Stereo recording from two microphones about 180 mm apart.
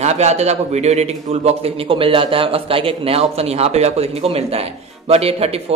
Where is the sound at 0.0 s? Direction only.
35° right (ahead or behind).